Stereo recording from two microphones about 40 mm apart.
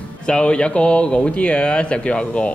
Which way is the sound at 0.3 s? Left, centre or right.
Left.